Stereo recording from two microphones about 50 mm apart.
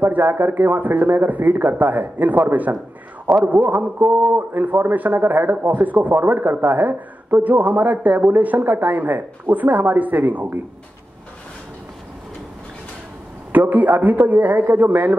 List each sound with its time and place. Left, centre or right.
0.0 s a man's voice: right
13.5 s a man's voice: right